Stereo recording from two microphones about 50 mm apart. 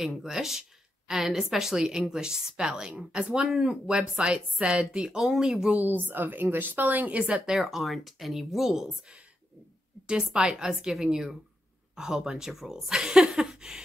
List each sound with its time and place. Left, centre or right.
0.0 s a woman's voice: centre
5.8 s speech: right
7.3 s a woman's voice: centre
7.6 s speech: centre
10.0 s a woman's voice: centre